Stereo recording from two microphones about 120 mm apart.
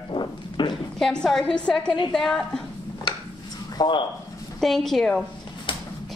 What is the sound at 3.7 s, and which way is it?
Speech, 40° left (ahead or behind).